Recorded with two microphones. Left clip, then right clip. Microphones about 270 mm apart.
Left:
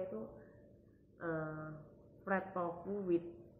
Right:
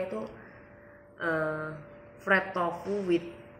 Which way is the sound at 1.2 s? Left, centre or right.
Centre.